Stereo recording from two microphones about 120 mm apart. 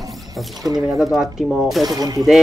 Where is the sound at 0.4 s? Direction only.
Centre (ahead or behind).